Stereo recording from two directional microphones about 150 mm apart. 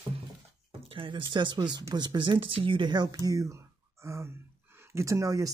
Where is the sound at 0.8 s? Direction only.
35° right (ahead or behind).